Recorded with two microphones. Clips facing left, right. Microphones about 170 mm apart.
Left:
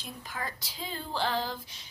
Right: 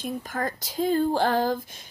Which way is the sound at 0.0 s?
45° right (ahead or behind).